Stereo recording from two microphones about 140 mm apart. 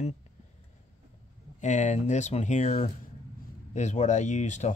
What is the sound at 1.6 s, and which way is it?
Speech, 60° left (ahead or behind).